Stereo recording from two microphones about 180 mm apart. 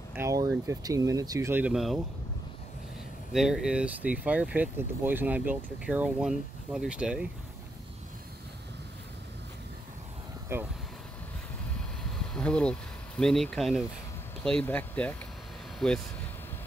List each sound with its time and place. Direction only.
0.1 s speech: 15° right (ahead or behind)
3.3 s speech: centre (ahead or behind)
10.5 s speech: 15° right (ahead or behind)
12.4 s speech: 5° left (ahead or behind)